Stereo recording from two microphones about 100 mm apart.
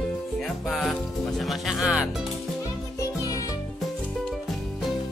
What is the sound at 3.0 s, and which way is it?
Music, 35° left (ahead or behind).